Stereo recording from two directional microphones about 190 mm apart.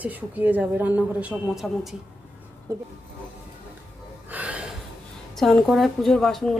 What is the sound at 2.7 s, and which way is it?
Speech, 15° right (ahead or behind).